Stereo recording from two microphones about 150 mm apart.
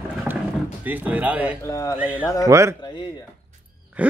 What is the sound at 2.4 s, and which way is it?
Speech, 20° right (ahead or behind).